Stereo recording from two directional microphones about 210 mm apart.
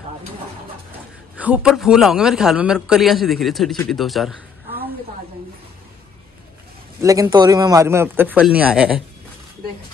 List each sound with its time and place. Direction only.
1.4 s a man's voice: 5° right (ahead or behind)
7.0 s a man's voice: 15° right (ahead or behind)